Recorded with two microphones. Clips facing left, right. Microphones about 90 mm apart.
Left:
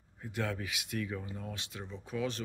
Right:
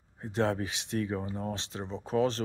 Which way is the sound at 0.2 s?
30° right (ahead or behind).